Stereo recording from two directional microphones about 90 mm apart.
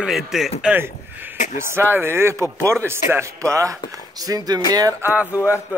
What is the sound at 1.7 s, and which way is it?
Speech, 25° right (ahead or behind).